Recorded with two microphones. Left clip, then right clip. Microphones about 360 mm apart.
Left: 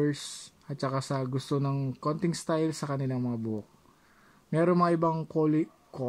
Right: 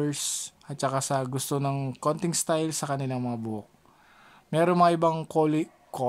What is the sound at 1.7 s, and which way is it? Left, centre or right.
Speech, right.